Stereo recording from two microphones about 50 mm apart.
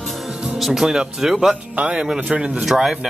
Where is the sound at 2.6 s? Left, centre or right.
Centre.